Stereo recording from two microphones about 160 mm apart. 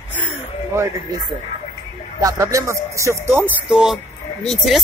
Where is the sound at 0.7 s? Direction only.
15° right (ahead or behind).